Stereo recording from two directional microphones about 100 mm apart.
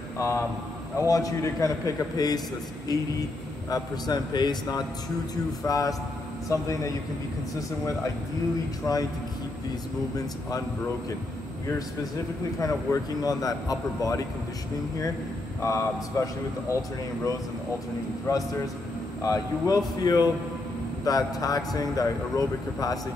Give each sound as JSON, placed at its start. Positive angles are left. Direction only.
{"t": 0.2, "sound": "speech", "side_deg": 30}
{"t": 3.7, "sound": "a man's voice", "side_deg": 45}
{"t": 8.8, "sound": "speech", "side_deg": 30}
{"t": 12.5, "sound": "speech", "side_deg": 35}
{"t": 15.6, "sound": "speech", "side_deg": 30}
{"t": 18.3, "sound": "speech", "side_deg": 30}